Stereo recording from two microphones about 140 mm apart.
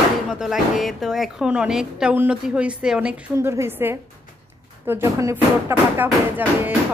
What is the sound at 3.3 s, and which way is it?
Speech, 20° right (ahead or behind).